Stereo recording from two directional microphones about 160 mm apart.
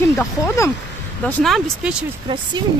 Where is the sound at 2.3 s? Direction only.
30° right (ahead or behind).